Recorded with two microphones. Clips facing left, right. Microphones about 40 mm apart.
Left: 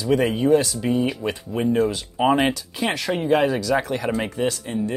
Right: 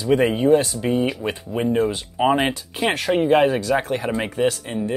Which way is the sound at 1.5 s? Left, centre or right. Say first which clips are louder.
Even; centre.